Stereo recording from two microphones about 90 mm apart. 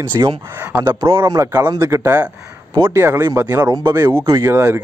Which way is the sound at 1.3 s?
40° right (ahead or behind).